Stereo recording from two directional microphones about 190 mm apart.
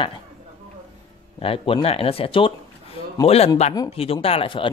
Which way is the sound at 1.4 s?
30° left (ahead or behind).